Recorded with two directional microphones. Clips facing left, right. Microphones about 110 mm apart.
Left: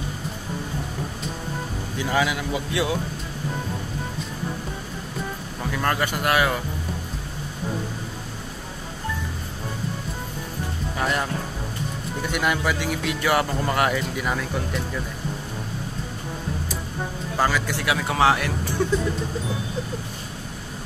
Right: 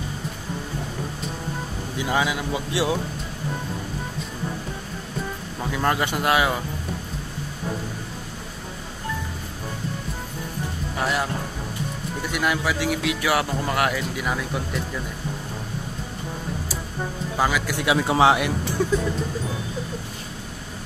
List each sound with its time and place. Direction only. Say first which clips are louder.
2.0 s speech: even; 20° right (ahead or behind)
5.7 s speech: right 1 dB; 15° right (ahead or behind)
11.0 s speech: even; 5° right (ahead or behind)
17.4 s speech: even; 10° right (ahead or behind)
18.0 s speech: right 2 dB; 20° right (ahead or behind)